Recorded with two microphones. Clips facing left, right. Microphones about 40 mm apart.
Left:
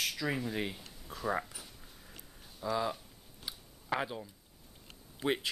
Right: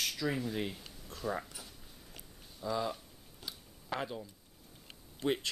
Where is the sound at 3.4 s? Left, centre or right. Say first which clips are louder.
Left 4 dB; centre.